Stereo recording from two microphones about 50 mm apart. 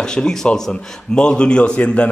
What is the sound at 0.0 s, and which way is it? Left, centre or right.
A man's voice, centre.